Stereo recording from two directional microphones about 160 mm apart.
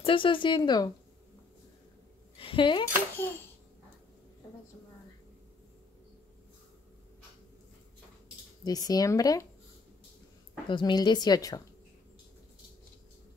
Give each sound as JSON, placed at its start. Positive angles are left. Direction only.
{"t": 0.0, "sound": "a woman's voice", "side_deg": 30}
{"t": 2.3, "sound": "a sound", "side_deg": 30}
{"t": 3.2, "sound": "a child's voice", "side_deg": 15}
{"t": 8.6, "sound": "a woman's voice", "side_deg": 25}
{"t": 10.7, "sound": "a woman's voice", "side_deg": 30}